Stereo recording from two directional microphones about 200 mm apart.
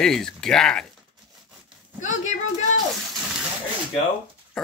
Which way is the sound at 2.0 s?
35° left (ahead or behind).